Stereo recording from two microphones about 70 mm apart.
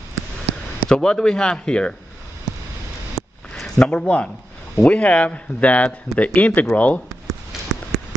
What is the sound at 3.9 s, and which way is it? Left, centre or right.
Speech, centre.